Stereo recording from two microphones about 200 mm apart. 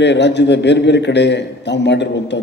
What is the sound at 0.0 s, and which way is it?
A man's voice, 60° left (ahead or behind).